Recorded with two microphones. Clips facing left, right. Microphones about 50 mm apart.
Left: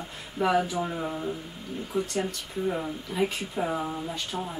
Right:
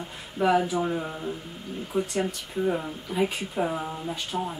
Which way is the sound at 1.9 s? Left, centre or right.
Centre.